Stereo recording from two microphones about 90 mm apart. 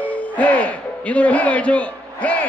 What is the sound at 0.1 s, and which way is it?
A man's voice, 15° left (ahead or behind).